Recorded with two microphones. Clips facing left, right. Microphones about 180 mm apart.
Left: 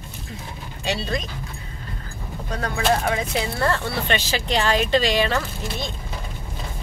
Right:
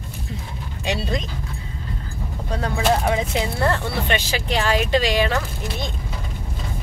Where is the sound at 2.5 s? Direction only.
20° right (ahead or behind).